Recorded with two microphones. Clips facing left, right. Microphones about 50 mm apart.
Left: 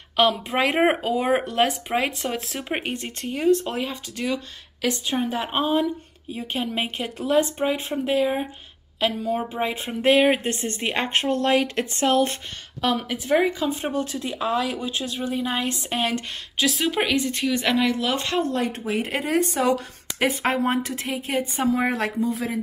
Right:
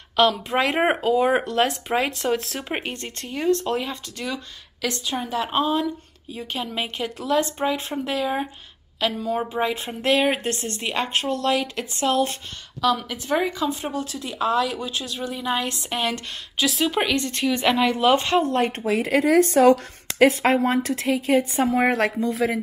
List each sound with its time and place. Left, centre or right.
0.1 s a woman's voice: centre
9.5 s a woman's voice: left
12.9 s a woman's voice: centre
16.6 s speech: centre
17.5 s speech: centre
17.9 s speech: right
18.5 s speech: right
18.9 s speech: right
19.5 s a woman's voice: right